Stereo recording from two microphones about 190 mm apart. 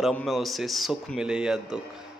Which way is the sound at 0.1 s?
Centre (ahead or behind).